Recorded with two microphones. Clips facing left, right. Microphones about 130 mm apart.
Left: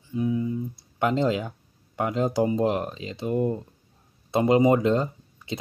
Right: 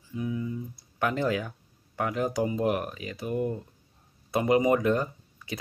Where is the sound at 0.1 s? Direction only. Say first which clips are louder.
Left 6 dB; 30° left (ahead or behind).